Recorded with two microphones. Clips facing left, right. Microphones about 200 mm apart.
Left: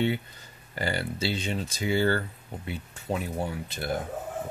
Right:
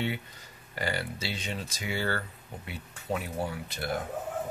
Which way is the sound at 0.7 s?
30° left (ahead or behind).